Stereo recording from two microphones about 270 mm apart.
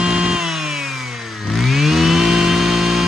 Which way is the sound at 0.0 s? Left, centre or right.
Centre.